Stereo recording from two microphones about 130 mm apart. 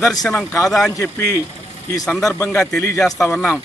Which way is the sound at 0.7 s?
Centre (ahead or behind).